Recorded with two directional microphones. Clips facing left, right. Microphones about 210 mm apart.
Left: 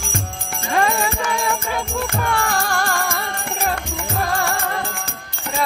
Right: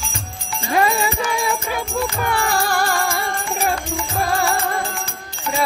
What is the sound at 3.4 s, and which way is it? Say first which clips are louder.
Music: right 1 dB; 55° left (ahead or behind).